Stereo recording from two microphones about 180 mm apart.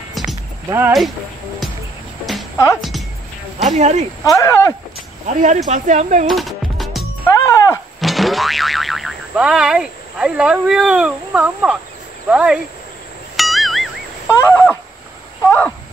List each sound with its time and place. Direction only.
0.1 s rowboat: centre (ahead or behind)
0.7 s speech: 10° right (ahead or behind)
2.5 s speech: 15° left (ahead or behind)
3.6 s speech: 40° right (ahead or behind)
4.2 s speech: 15° left (ahead or behind)
5.3 s speech: 45° right (ahead or behind)
6.2 s music: centre (ahead or behind)
7.2 s music: 15° left (ahead or behind)
8.0 s speech: centre (ahead or behind)
13.4 s music: centre (ahead or behind)
14.3 s speech: 15° left (ahead or behind)
15.4 s a sound: 10° left (ahead or behind)